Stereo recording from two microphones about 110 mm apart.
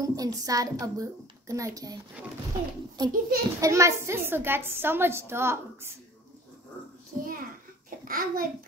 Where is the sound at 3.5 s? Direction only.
30° right (ahead or behind).